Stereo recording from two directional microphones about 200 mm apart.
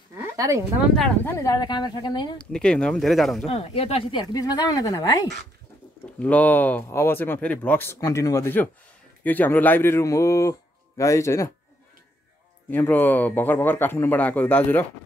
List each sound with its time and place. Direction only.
0.2 s a sound: 15° right (ahead or behind)
0.9 s speech: 5° left (ahead or behind); by 2.3 s 20° left (ahead or behind)
2.3 s speech: 5° left (ahead or behind)
3.4 s speech: 30° left (ahead or behind)
6.1 s speech: 5° left (ahead or behind)
12.6 s speech: 10° left (ahead or behind)